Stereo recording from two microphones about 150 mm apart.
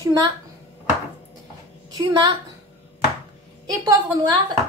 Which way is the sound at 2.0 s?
25° right (ahead or behind).